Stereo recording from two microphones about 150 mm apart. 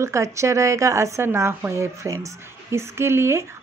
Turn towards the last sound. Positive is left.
turn(degrees=-15)  # may be behind; listen again after turning